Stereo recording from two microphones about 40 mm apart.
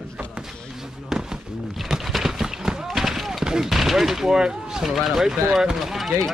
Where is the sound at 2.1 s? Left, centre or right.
Centre.